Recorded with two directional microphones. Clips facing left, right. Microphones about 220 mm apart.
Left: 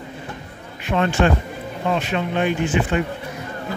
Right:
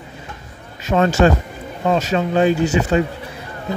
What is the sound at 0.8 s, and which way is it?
Speech, 40° right (ahead or behind).